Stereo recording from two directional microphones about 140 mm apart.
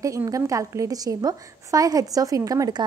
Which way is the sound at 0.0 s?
25° right (ahead or behind).